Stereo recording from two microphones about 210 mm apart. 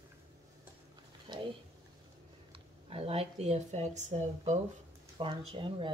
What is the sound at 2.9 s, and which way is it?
Speech, 25° right (ahead or behind).